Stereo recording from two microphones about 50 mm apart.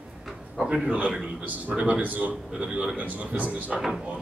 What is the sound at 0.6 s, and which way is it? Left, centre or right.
A man's voice, right.